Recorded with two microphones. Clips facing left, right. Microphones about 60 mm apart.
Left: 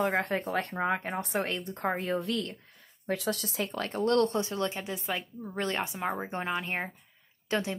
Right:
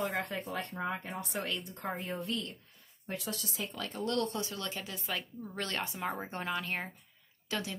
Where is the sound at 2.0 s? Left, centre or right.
Left.